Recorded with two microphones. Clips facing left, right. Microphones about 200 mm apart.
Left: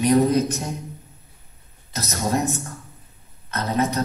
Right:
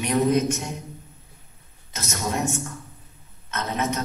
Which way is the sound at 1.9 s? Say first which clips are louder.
Left 5 dB; 35° left (ahead or behind).